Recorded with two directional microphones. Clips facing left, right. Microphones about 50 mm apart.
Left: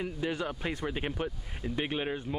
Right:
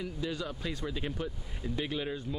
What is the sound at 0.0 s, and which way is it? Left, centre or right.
Speech, left.